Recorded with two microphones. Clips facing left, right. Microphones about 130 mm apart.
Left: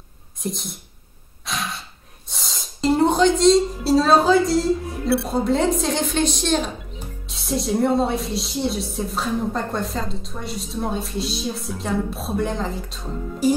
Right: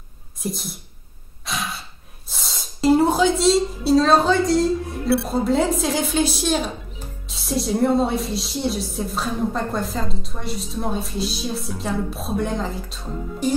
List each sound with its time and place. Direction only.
0.4 s speech: centre (ahead or behind)
1.4 s a sound: centre (ahead or behind)
5.0 s speech: centre (ahead or behind)